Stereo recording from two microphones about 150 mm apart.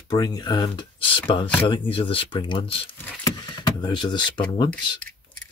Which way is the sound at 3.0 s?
10° left (ahead or behind).